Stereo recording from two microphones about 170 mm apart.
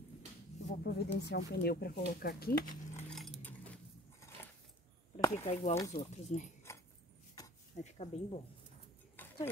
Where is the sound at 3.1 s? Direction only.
Centre (ahead or behind).